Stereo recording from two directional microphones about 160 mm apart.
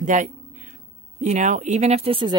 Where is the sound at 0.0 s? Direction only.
55° right (ahead or behind).